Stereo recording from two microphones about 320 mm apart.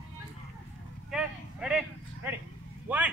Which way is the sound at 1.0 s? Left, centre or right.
Centre.